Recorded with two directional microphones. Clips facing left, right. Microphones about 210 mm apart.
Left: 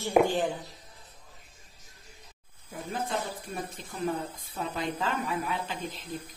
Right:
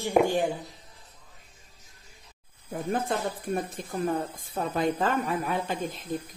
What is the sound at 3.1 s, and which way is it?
A woman's voice, 55° right (ahead or behind).